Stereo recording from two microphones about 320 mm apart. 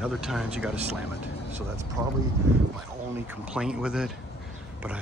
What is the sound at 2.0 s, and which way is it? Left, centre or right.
Speech, centre.